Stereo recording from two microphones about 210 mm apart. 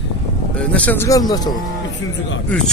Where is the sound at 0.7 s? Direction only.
10° left (ahead or behind).